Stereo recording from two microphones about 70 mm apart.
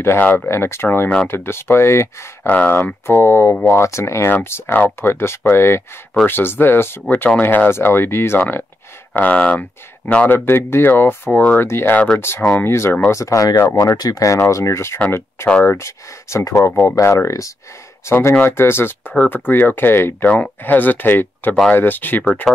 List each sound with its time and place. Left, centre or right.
0.0 s speech: left
0.5 s speech: left
2.4 s speech: left
9.1 s speech: centre
10.3 s speech: left
11.3 s speech: centre
11.6 s speech: left
12.4 s speech: centre
12.6 s speech: left
13.1 s speech: left
13.9 s speech: left
14.2 s speech: left